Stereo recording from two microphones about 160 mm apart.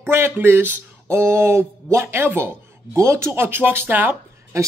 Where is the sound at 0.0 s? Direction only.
15° right (ahead or behind).